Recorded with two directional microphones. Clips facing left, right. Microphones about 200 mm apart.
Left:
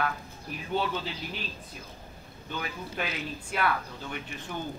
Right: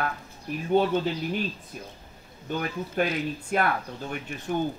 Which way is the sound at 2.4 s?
45° right (ahead or behind).